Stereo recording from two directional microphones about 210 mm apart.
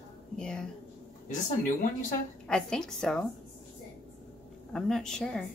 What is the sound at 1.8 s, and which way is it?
Speech, 35° left (ahead or behind).